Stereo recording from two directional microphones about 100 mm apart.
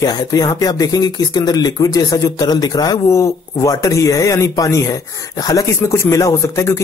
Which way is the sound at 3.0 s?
30° left (ahead or behind).